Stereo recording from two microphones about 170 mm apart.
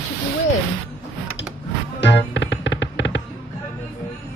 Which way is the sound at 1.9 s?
90° left.